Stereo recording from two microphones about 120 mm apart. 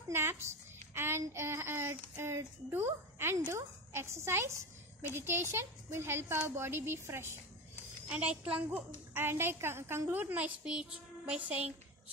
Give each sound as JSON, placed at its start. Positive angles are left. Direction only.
{"t": 0.1, "sound": "a woman's voice", "side_deg": -20}
{"t": 8.1, "sound": "a woman's voice", "side_deg": -10}